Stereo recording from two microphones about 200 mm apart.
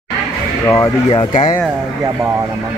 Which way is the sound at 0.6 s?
15° left (ahead or behind).